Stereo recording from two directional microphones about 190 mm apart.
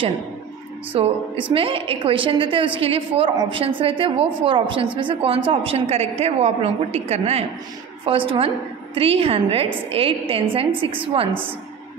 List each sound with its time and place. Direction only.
0.9 s a woman's voice: 30° right (ahead or behind)